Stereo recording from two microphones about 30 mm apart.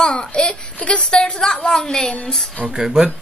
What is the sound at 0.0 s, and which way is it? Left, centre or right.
Speech, left.